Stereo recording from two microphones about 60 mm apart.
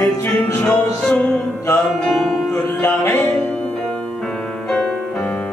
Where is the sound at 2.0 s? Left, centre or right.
Centre.